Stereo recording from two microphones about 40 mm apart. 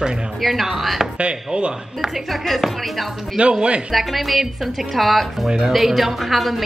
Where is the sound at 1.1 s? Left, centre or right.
Right.